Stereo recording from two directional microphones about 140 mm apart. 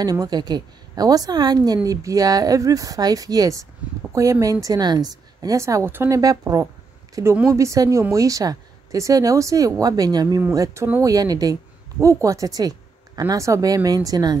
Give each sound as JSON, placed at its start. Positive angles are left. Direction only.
{"t": 0.0, "sound": "a woman's voice", "side_deg": -25}